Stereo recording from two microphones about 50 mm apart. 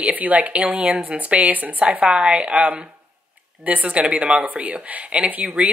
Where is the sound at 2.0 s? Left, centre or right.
Right.